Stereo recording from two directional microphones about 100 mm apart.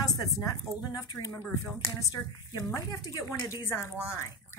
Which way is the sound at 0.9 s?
35° left (ahead or behind).